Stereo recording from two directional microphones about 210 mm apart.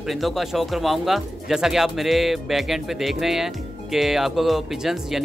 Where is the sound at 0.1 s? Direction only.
Centre (ahead or behind).